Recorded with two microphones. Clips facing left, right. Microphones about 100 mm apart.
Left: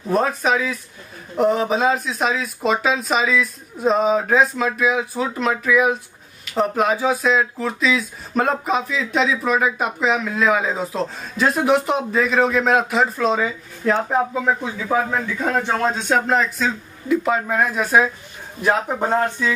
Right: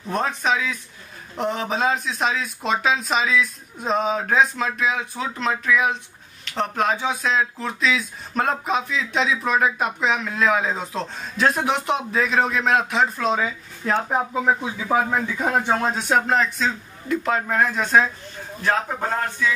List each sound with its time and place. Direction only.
0.1 s a man's voice: 5° left (ahead or behind); by 19.5 s 20° left (ahead or behind)